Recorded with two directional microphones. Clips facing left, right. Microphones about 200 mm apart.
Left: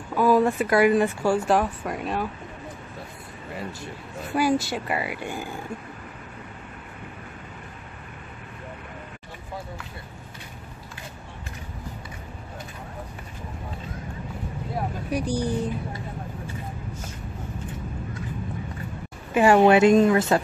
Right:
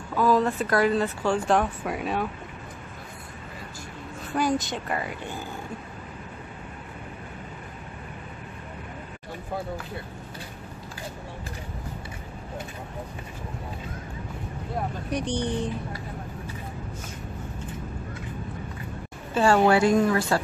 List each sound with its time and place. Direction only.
0.1 s speech: 10° left (ahead or behind)
4.4 s speech: 5° left (ahead or behind)
15.0 s speech: 5° left (ahead or behind)
19.3 s a woman's voice: 15° left (ahead or behind)